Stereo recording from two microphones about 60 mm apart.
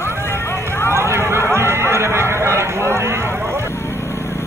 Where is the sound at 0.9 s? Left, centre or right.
Right.